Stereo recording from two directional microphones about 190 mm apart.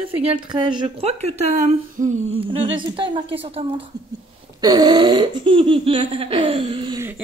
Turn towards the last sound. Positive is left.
turn(degrees=-25)  # may be behind; listen again after turning